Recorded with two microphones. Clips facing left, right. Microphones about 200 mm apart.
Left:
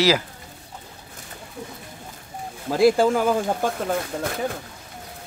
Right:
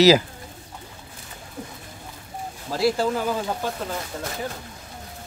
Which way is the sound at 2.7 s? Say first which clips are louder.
Left 5 dB; 50° left (ahead or behind).